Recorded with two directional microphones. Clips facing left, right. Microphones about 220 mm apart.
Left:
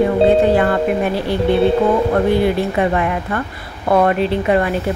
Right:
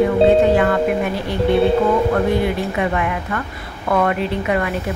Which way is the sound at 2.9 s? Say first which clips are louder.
Left 3 dB; 35° left (ahead or behind).